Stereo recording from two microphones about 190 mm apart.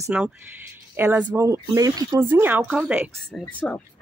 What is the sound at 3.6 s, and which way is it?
Speech, 5° left (ahead or behind).